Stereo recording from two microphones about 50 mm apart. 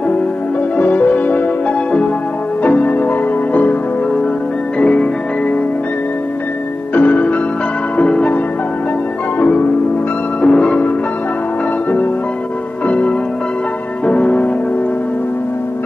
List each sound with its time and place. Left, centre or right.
0.7 s music: left
2.6 s music: left
4.7 s music: left
6.9 s music: left
10.4 s music: left
12.8 s music: left